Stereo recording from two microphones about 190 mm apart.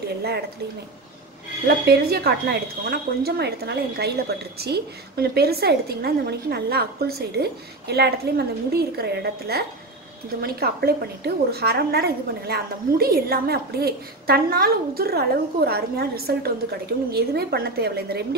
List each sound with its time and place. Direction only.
1.9 s a woman's voice: 55° right (ahead or behind)